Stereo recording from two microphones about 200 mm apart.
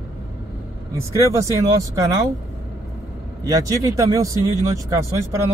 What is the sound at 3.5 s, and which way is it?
Speech, 15° right (ahead or behind).